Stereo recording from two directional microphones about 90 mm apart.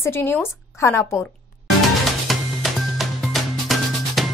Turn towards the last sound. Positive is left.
turn(degrees=0)  # may be behind; listen again after turning